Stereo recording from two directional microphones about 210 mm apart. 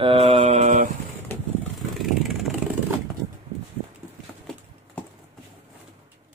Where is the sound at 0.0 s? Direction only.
25° right (ahead or behind).